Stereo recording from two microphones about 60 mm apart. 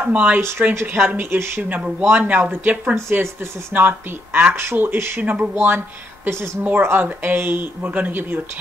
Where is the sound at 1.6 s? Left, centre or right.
Right.